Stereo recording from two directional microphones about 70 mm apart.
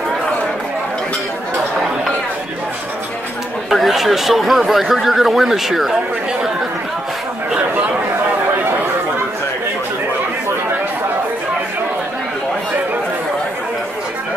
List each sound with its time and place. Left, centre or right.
3.7 s speech: centre